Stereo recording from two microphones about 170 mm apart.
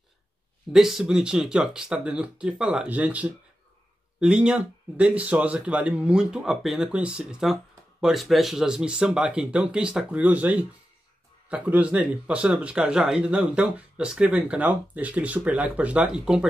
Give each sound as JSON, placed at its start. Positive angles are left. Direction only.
{"t": 0.7, "sound": "speech", "side_deg": 0}